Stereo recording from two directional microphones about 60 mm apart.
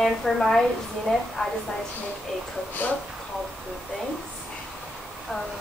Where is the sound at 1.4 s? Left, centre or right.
Centre.